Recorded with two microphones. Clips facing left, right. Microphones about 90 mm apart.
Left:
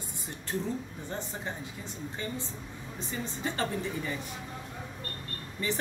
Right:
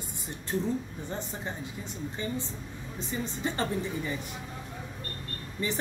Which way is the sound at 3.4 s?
25° right (ahead or behind).